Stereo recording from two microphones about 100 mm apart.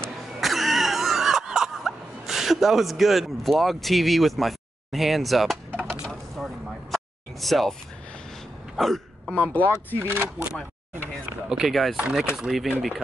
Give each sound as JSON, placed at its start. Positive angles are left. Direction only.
{"t": 0.0, "sound": "throat clearing", "side_deg": 0}
{"t": 5.7, "sound": "a sound", "side_deg": -15}
{"t": 6.0, "sound": "a sound", "side_deg": 0}
{"t": 8.7, "sound": "hiccup", "side_deg": 0}
{"t": 9.3, "sound": "speech", "side_deg": 15}
{"t": 9.9, "sound": "speech", "side_deg": -25}
{"t": 11.4, "sound": "speech", "side_deg": -5}